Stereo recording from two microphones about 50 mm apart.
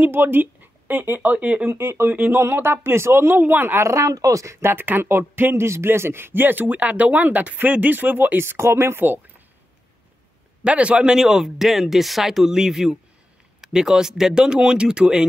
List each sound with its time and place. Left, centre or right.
0.0 s speech: right
1.7 s speech: right
2.3 s speech: right
3.8 s speech: right
4.6 s speech: right
8.4 s speech: right
10.6 s speech: right